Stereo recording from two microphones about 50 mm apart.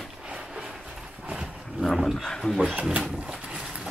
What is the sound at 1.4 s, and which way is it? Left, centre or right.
Roaring cats, centre.